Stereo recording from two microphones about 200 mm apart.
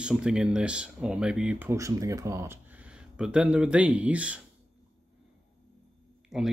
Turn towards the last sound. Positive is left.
turn(degrees=0)  # may be behind; listen again after turning